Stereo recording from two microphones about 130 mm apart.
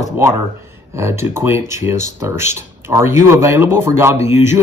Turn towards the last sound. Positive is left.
turn(degrees=-20)  # may be behind; listen again after turning